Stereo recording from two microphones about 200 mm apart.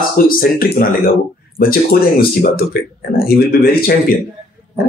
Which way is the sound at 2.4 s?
50° left (ahead or behind).